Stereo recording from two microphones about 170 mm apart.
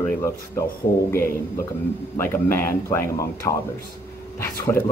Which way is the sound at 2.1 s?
15° left (ahead or behind).